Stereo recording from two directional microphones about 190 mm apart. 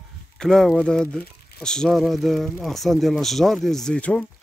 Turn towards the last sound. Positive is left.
turn(degrees=5)  # may be behind; listen again after turning